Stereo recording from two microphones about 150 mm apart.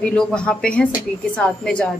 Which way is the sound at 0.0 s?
5° left (ahead or behind).